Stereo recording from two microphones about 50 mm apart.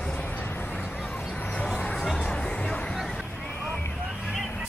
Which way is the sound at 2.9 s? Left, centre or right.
Centre.